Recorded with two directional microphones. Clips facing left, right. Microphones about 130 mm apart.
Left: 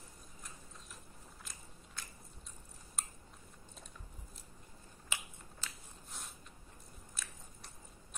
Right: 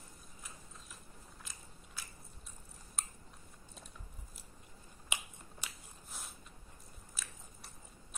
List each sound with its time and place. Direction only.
1.4 s biting: centre (ahead or behind)
3.0 s chewing: centre (ahead or behind)
5.1 s finger snapping: 15° right (ahead or behind)
5.6 s a sound: 15° right (ahead or behind)
6.0 s a sound: centre (ahead or behind)
7.2 s biting: centre (ahead or behind)